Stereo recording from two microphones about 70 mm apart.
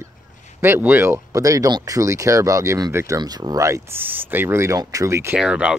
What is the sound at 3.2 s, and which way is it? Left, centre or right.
Speech, right.